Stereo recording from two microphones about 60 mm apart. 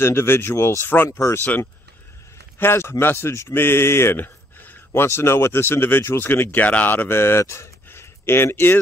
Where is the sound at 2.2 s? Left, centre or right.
Left.